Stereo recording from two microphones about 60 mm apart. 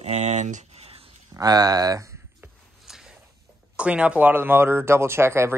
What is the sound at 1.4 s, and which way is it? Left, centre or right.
Speech, right.